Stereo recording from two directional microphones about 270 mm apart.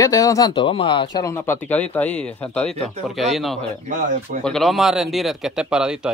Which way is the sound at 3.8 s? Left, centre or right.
Right.